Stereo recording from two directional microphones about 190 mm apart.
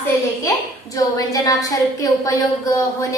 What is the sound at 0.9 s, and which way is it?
A woman's voice, 20° left (ahead or behind).